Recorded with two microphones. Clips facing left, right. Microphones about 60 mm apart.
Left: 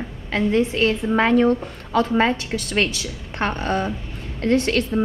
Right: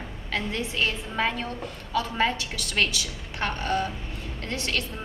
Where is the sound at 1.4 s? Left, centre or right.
Left.